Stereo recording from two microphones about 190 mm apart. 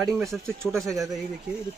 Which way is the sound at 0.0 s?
Centre (ahead or behind).